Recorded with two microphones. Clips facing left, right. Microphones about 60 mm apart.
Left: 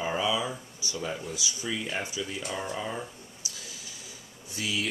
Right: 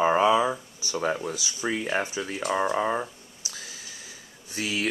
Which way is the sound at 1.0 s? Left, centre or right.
Right.